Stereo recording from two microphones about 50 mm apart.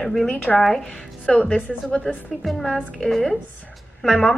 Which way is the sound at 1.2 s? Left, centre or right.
Left.